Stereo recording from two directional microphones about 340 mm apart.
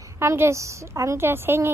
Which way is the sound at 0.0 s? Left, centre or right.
Centre.